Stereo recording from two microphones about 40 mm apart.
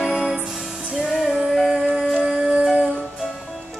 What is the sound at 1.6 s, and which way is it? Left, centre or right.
Music, centre.